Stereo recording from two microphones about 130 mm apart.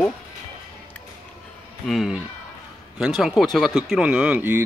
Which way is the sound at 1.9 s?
Centre (ahead or behind).